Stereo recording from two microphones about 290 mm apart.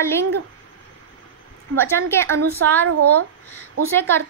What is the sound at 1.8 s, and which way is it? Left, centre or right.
Speech, centre.